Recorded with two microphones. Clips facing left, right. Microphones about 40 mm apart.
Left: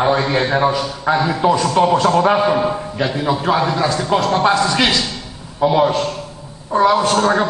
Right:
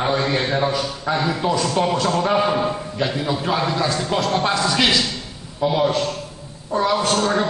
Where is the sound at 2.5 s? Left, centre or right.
Centre.